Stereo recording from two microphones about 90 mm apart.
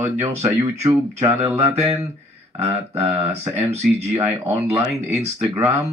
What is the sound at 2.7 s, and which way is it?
Speech, 30° right (ahead or behind).